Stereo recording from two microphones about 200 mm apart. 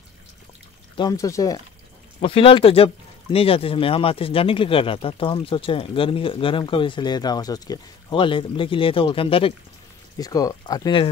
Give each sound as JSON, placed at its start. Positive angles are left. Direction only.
{"t": 0.9, "sound": "speech", "side_deg": 20}
{"t": 2.1, "sound": "speech", "side_deg": 30}